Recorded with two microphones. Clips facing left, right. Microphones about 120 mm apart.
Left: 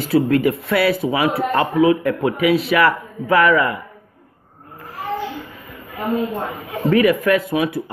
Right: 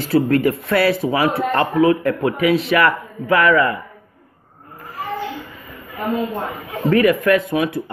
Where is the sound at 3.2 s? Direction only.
20° left (ahead or behind).